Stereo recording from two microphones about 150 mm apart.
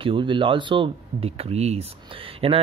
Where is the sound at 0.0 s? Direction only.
35° right (ahead or behind).